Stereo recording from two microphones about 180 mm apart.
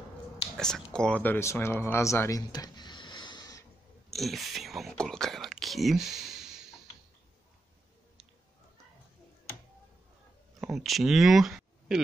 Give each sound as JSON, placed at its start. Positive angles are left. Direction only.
{"t": 0.6, "sound": "speech", "side_deg": 5}
{"t": 4.1, "sound": "speech", "side_deg": 0}
{"t": 10.6, "sound": "speech", "side_deg": 0}